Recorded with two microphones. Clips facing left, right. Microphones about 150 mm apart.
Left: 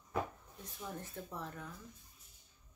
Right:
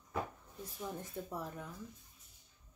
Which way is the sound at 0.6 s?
10° right (ahead or behind).